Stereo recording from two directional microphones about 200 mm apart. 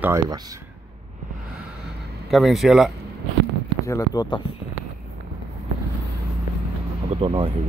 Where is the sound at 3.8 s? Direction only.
15° left (ahead or behind).